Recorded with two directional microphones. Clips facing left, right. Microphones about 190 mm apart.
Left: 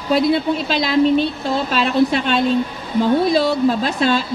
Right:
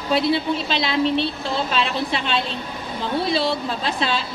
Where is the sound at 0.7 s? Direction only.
45° left (ahead or behind).